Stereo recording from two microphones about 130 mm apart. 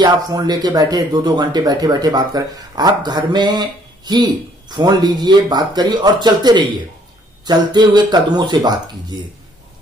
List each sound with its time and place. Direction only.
0.0 s speech: 30° right (ahead or behind)